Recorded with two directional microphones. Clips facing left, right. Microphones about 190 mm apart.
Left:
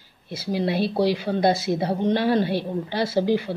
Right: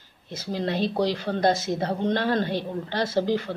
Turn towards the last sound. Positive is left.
turn(degrees=10)  # may be behind; listen again after turning